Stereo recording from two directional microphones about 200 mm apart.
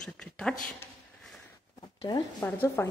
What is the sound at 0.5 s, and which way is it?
Speech, 40° left (ahead or behind).